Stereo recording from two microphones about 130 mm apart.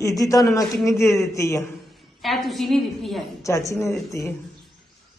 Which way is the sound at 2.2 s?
Centre (ahead or behind).